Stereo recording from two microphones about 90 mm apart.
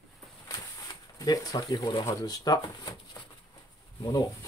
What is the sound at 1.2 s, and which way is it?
Speech, 45° left (ahead or behind).